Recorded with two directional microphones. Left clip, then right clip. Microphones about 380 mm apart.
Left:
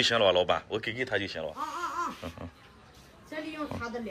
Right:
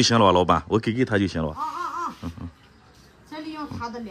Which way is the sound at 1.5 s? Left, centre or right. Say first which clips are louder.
Right 5 dB; centre.